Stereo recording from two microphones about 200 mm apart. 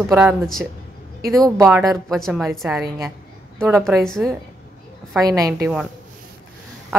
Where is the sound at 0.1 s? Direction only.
5° right (ahead or behind).